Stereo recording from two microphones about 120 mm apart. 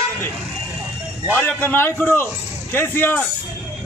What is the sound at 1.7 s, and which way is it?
A man's voice, 20° left (ahead or behind).